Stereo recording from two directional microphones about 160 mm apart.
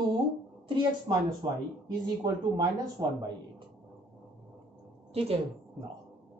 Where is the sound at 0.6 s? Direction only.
30° right (ahead or behind).